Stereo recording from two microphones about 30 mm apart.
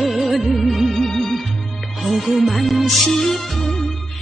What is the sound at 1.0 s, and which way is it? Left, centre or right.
Music, centre.